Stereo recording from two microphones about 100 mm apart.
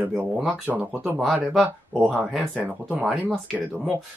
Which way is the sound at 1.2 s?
Centre (ahead or behind).